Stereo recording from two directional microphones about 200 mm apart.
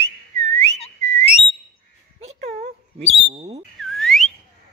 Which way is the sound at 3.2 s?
30° right (ahead or behind).